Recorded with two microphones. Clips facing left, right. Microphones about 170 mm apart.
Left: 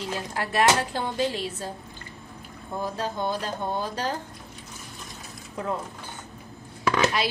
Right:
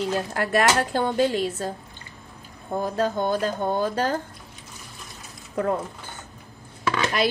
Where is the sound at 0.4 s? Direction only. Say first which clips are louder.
Right 1 dB; 50° right (ahead or behind).